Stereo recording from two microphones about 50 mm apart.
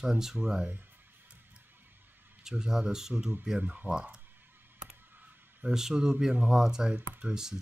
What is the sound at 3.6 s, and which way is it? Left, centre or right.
Speech, right.